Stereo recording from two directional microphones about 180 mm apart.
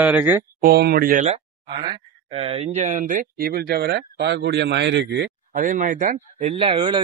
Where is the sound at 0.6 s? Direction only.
55° right (ahead or behind).